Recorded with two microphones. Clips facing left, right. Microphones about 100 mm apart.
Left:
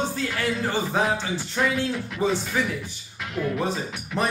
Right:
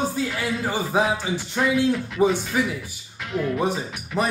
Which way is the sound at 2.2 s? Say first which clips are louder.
Right 4 dB; 15° right (ahead or behind).